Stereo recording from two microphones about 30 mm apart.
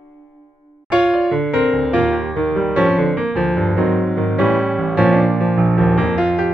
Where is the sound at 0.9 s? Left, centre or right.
Right.